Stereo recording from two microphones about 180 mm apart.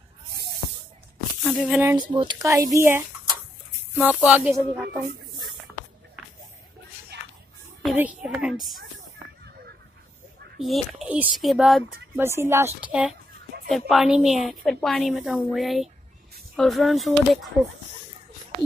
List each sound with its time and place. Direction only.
1.4 s speech: centre (ahead or behind)
2.1 s speech: 20° right (ahead or behind); by 5.0 s 5° right (ahead or behind)
5.7 s music: 5° left (ahead or behind)
7.8 s a woman's voice: 10° right (ahead or behind)
10.6 s a woman's voice: centre (ahead or behind)
12.2 s a woman's voice: 15° right (ahead or behind)